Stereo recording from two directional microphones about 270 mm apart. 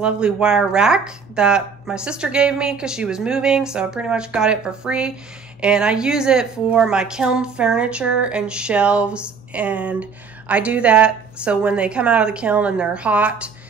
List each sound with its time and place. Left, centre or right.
0.0 s speech: centre